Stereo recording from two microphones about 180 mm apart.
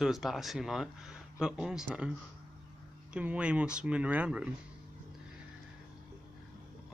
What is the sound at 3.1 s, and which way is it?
Speech, 5° right (ahead or behind).